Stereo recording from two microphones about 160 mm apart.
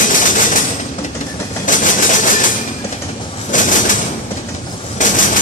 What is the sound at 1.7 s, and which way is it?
Train, 55° left (ahead or behind).